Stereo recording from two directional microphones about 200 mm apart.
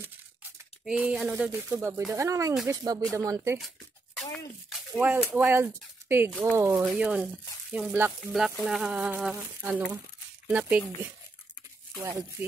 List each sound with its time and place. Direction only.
0.8 s speech: 5° right (ahead or behind)
3.5 s a sound: centre (ahead or behind)
4.6 s speech: centre (ahead or behind)
12.0 s speech: 15° right (ahead or behind)